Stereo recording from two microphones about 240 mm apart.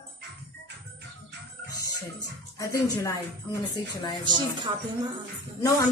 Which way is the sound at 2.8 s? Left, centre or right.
Centre.